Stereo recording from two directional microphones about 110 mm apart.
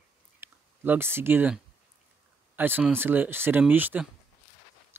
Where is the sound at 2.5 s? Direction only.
15° right (ahead or behind).